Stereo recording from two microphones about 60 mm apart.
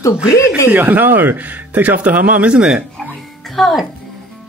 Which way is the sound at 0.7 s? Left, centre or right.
Right.